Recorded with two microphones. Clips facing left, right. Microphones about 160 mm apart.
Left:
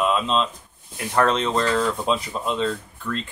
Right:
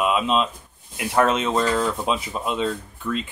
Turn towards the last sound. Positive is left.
turn(degrees=-5)  # may be behind; listen again after turning